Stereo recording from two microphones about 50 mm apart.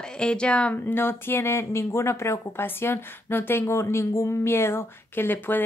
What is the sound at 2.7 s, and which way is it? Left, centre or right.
Speech, left.